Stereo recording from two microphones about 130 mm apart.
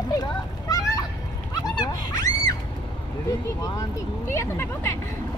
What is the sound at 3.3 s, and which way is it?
Speech, 25° left (ahead or behind).